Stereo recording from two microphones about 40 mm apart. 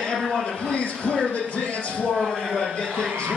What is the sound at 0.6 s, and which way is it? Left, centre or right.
Speech, left.